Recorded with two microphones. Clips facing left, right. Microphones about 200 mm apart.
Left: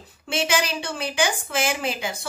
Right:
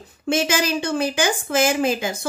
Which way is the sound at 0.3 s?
45° right (ahead or behind).